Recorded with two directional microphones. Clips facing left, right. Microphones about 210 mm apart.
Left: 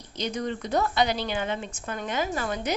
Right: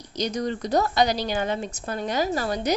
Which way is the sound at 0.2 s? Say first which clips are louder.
Right 3 dB; 40° right (ahead or behind).